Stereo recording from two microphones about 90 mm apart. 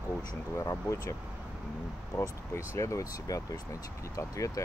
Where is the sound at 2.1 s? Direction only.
35° left (ahead or behind).